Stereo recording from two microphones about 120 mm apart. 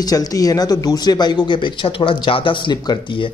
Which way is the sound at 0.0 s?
30° left (ahead or behind).